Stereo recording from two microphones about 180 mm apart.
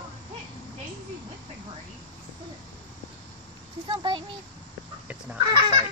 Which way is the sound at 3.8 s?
25° right (ahead or behind).